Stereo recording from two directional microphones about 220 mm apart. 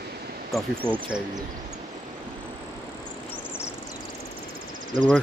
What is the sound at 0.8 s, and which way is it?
Speech, 10° right (ahead or behind).